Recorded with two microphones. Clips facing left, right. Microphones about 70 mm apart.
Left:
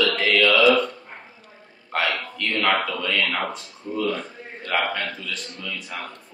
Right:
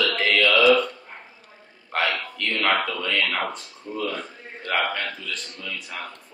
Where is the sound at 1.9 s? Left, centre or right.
Centre.